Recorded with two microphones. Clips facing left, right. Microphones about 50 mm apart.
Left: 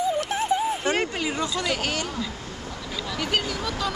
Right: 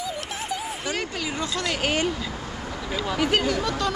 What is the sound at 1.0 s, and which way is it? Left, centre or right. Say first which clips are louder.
Speech: left 2 dB; centre.